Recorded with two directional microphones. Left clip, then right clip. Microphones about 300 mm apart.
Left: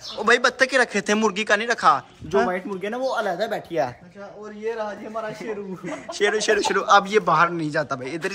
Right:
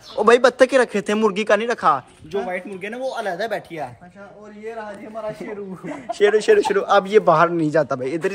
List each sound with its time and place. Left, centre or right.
0.2 s a man's voice: centre
2.3 s speech: left
2.8 s a man's voice: centre
5.9 s a man's voice: centre